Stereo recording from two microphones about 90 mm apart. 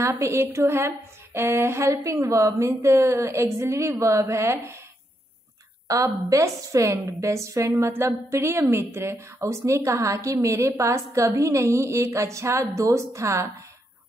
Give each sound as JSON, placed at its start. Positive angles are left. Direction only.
{"t": 0.0, "sound": "a woman's voice", "side_deg": -30}
{"t": 5.9, "sound": "a woman's voice", "side_deg": -40}